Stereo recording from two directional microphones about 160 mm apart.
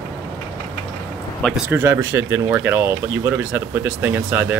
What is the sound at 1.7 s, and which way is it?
Speech, 15° right (ahead or behind).